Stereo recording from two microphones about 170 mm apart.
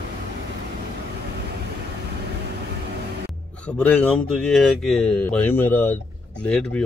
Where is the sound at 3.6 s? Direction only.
5° left (ahead or behind).